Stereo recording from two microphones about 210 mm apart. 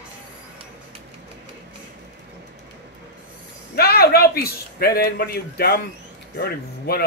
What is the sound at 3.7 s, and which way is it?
A man's voice, 45° left (ahead or behind).